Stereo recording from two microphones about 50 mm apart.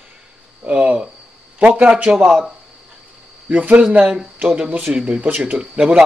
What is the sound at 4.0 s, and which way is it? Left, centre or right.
Speech, centre.